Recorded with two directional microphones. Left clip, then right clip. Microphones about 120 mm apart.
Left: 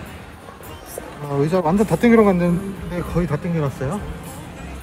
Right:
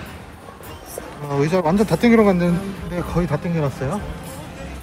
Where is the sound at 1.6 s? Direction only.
50° left (ahead or behind).